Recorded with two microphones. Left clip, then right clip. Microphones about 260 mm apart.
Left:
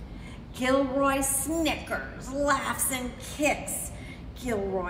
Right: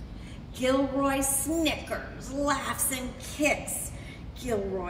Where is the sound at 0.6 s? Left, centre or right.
Centre.